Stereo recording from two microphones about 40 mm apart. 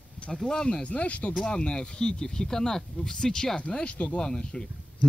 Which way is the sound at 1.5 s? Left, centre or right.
Left.